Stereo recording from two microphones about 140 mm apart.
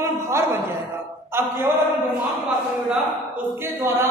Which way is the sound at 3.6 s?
15° right (ahead or behind).